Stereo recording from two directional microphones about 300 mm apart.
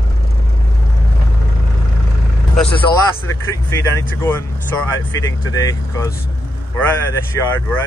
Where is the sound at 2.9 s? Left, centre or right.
Left.